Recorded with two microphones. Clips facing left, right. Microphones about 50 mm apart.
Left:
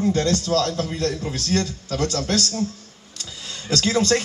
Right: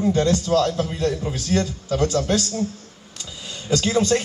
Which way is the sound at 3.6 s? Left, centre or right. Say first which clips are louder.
Right 1 dB; centre.